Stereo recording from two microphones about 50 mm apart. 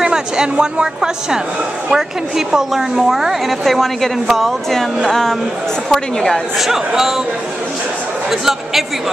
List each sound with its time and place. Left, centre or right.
0.0 s a woman's voice: centre
6.9 s a woman's voice: centre
8.3 s speech: centre